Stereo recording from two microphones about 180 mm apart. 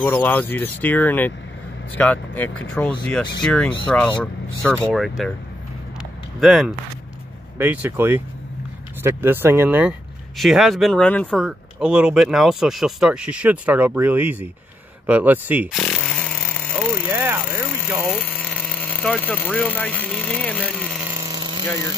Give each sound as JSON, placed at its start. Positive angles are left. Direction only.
{"t": 0.0, "sound": "speech", "side_deg": 10}
{"t": 6.4, "sound": "speech", "side_deg": 0}
{"t": 15.8, "sound": "vehicle", "side_deg": 5}
{"t": 17.1, "sound": "a sound", "side_deg": -10}
{"t": 18.0, "sound": "speech", "side_deg": 10}
{"t": 21.0, "sound": "a sound", "side_deg": -15}